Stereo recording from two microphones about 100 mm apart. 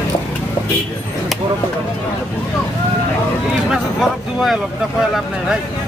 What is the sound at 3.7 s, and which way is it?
Speech, centre (ahead or behind).